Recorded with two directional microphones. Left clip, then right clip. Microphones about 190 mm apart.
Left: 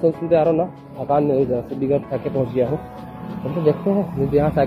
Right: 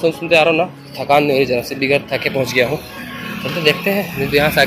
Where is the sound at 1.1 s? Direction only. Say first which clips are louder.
Right 5 dB; centre (ahead or behind).